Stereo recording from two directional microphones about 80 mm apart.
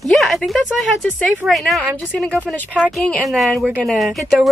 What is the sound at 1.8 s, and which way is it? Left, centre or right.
Speech, centre.